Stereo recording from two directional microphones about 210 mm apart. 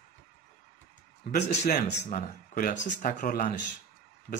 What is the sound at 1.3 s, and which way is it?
Speech, 45° left (ahead or behind).